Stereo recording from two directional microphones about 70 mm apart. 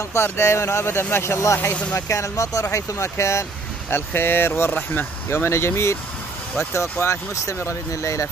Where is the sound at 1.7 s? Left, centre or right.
Centre.